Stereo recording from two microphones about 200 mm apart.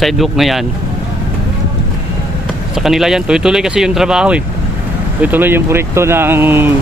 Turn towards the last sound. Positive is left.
turn(degrees=-10)  # may be behind; listen again after turning